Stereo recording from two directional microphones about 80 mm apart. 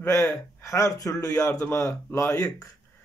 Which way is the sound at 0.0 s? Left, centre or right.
Left.